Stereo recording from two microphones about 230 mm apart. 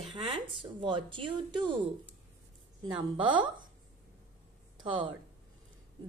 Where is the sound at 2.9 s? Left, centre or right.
Right.